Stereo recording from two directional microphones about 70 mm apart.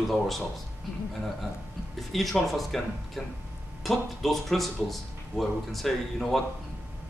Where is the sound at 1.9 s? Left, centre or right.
Centre.